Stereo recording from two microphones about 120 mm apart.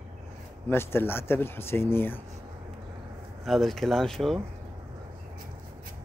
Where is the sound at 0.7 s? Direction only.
20° left (ahead or behind).